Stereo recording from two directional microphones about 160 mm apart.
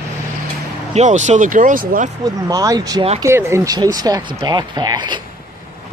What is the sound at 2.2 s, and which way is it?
Speech, 25° right (ahead or behind).